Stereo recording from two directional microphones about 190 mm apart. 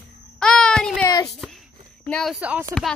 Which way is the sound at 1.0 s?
20° left (ahead or behind).